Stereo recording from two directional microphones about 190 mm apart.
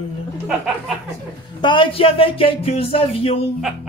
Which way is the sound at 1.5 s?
25° left (ahead or behind).